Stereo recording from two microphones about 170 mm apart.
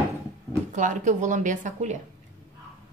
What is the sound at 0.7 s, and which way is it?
Speech, 45° right (ahead or behind).